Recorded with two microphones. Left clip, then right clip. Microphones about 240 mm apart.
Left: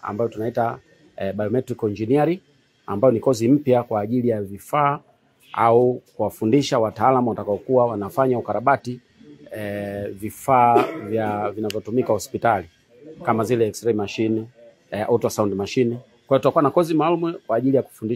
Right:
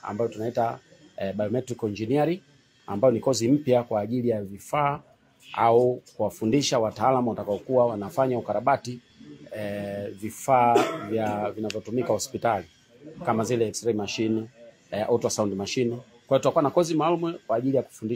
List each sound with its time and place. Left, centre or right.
0.0 s speech: left